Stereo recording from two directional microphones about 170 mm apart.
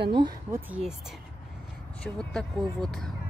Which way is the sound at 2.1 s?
5° left (ahead or behind).